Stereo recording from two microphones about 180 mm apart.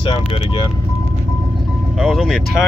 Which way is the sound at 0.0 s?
30° left (ahead or behind).